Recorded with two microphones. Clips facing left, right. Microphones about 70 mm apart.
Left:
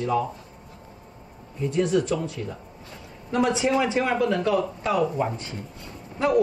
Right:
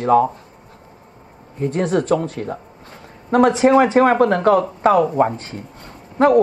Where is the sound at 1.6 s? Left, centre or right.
Right.